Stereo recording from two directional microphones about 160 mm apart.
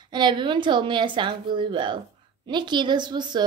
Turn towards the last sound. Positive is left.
turn(degrees=-25)  # may be behind; listen again after turning